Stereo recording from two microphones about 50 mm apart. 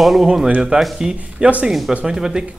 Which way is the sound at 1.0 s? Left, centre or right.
Right.